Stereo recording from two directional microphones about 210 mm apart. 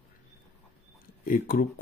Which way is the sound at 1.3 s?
40° left (ahead or behind).